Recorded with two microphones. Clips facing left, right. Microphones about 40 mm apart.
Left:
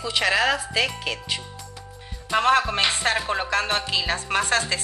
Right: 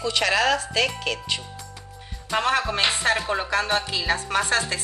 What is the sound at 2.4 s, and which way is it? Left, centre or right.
Music, left.